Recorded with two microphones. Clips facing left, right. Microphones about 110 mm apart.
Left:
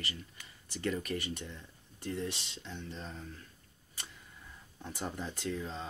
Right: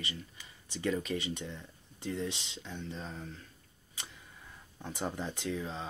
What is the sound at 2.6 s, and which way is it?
Speech, 15° right (ahead or behind).